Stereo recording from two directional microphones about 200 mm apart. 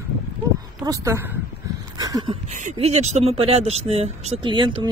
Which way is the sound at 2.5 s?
35° right (ahead or behind).